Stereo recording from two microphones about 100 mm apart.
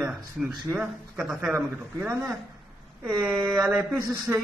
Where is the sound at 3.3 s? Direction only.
Centre (ahead or behind).